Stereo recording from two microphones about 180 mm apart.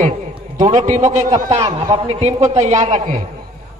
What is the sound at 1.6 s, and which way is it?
A man's voice, 25° right (ahead or behind).